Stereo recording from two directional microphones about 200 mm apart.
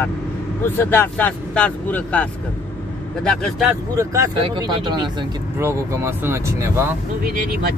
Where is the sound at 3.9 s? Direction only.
15° right (ahead or behind).